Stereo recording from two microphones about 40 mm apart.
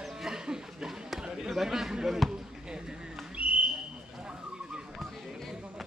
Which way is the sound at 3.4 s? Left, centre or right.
Right.